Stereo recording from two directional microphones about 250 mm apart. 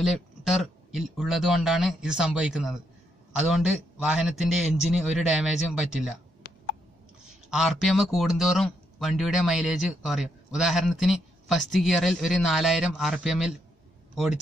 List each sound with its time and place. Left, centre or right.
0.0 s speech: centre
6.4 s tick-tock: left
7.4 s speech: centre